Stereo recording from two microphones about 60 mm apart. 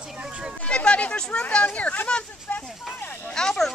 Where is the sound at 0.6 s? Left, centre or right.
Centre.